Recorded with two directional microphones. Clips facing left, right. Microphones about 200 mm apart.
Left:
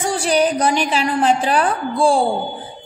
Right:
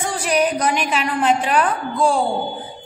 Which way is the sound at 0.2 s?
30° left (ahead or behind).